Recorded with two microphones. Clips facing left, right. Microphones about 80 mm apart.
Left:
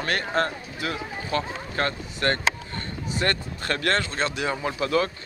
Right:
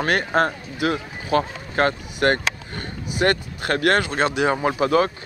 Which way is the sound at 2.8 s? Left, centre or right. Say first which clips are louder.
Right 3 dB; centre.